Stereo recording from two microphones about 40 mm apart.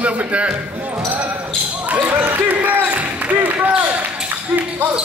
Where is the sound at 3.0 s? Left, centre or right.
Right.